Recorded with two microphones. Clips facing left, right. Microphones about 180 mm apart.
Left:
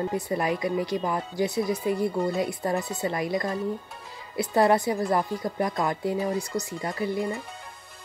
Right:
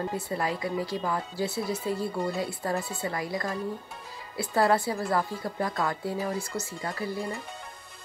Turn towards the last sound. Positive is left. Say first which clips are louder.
# left 4 dB
turn(degrees=20)  # may be behind; listen again after turning